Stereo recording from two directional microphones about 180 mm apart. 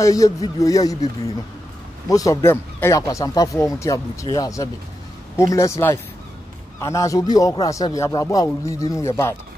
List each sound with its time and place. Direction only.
0.0 s a man's voice: 20° left (ahead or behind)
2.0 s speech: 20° left (ahead or behind)